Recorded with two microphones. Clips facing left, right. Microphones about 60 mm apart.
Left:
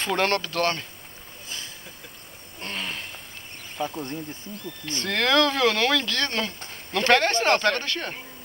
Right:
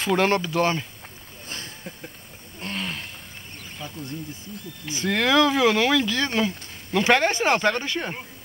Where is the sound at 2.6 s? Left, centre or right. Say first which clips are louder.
Right 2 dB; centre.